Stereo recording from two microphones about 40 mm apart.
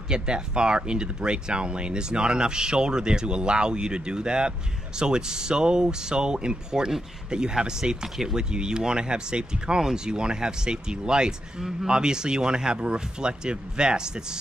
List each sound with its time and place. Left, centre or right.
0.1 s speech: right